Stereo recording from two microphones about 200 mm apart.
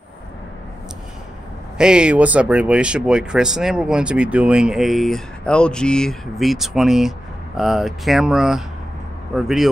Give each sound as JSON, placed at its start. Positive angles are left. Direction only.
{"t": 1.8, "sound": "speech", "side_deg": -5}